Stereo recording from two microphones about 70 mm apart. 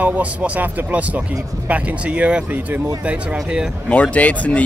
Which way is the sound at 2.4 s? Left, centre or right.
Right.